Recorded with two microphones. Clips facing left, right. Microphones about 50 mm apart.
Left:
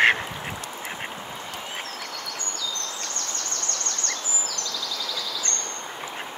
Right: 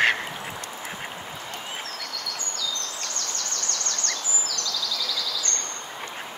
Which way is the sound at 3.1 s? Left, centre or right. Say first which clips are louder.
Even; left.